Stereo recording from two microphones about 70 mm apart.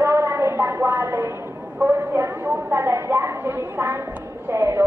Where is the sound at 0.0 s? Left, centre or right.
Right.